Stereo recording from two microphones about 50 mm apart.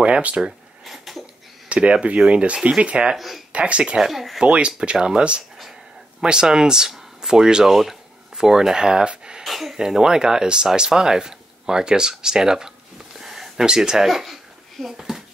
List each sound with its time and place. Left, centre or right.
0.0 s speech: right
0.8 s a sound: centre
1.7 s speech: right
3.2 s speech: centre
3.5 s speech: right
4.0 s speech: centre
4.4 s speech: right
9.4 s a sound: centre
9.8 s speech: centre
13.2 s a sound: centre